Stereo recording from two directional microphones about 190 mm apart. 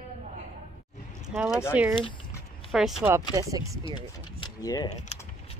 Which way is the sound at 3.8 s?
25° left (ahead or behind).